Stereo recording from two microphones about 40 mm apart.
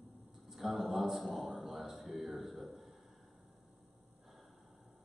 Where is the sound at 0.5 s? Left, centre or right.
Centre.